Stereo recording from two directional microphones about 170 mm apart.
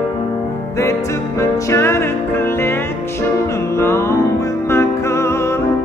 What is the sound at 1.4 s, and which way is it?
Music, 15° left (ahead or behind).